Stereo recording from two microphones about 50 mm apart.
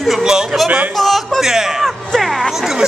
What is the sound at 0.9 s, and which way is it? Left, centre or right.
Speech, centre.